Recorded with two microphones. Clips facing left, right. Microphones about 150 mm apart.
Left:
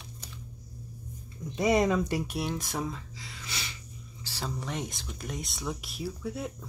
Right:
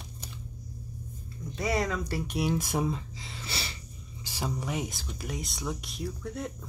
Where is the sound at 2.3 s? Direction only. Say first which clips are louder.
Right 4 dB; 5° right (ahead or behind); by 3.8 s 35° right (ahead or behind).